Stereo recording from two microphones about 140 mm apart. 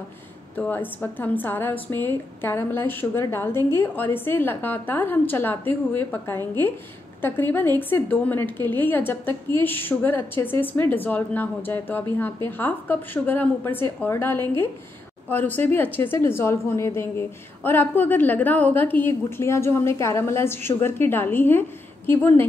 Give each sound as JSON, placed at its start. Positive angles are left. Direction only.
{"t": 0.6, "sound": "a woman's voice", "side_deg": 15}